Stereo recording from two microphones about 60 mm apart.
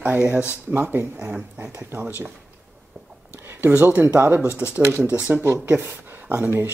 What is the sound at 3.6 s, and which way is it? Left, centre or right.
Speech, right.